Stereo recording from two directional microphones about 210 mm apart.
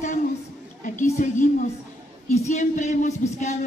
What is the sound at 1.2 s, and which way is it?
Speech, 40° left (ahead or behind).